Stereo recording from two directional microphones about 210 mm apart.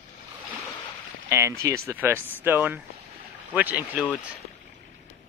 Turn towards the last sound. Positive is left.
turn(degrees=-10)  # may be behind; listen again after turning